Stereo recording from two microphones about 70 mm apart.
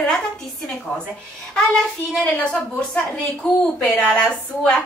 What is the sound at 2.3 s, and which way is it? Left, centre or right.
Speech, centre.